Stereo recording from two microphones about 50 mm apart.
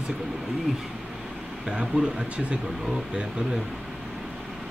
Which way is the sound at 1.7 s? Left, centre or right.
Centre.